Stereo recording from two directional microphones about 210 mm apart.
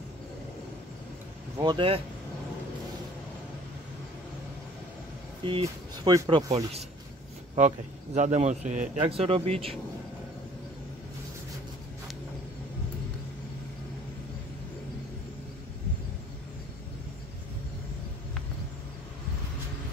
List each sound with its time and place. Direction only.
1.6 s speech: 25° right (ahead or behind)
5.4 s speech: 25° right (ahead or behind)